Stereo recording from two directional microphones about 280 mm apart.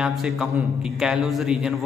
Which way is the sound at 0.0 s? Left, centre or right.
Centre.